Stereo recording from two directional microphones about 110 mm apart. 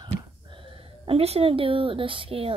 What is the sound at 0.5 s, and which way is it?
Speech, 55° right (ahead or behind).